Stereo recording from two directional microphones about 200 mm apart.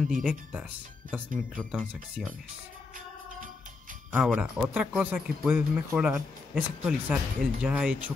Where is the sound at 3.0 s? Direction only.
45° right (ahead or behind).